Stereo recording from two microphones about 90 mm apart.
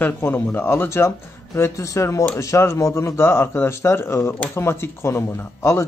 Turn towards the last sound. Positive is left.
turn(degrees=30)  # may be behind; listen again after turning